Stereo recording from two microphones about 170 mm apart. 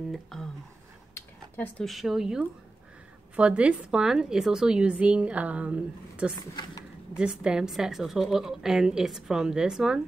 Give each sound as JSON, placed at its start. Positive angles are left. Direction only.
{"t": 0.1, "sound": "speech", "side_deg": 5}
{"t": 1.1, "sound": "dishes", "side_deg": 10}
{"t": 1.9, "sound": "a woman's voice", "side_deg": 0}
{"t": 6.3, "sound": "speech", "side_deg": 25}
{"t": 7.2, "sound": "a woman's voice", "side_deg": -5}